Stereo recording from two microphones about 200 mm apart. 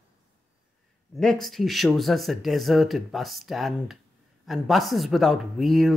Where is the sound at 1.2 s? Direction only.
Centre (ahead or behind).